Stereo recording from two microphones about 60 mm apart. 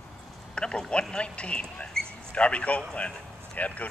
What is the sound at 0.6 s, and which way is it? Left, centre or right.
Speech, centre.